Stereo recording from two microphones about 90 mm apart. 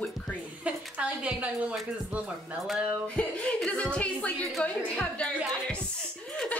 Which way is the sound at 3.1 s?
10° left (ahead or behind).